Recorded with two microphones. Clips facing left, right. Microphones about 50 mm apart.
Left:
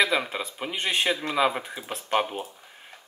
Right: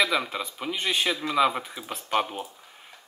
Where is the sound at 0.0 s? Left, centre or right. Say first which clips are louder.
Left 1 dB; centre.